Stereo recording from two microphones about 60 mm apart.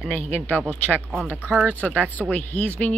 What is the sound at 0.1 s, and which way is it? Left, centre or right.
Speech, left.